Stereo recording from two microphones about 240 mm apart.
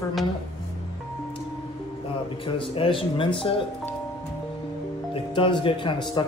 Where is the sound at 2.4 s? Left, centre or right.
Left.